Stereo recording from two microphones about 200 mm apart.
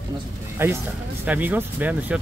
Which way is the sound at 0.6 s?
10° right (ahead or behind).